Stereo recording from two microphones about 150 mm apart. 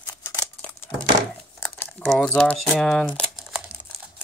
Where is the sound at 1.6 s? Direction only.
5° left (ahead or behind).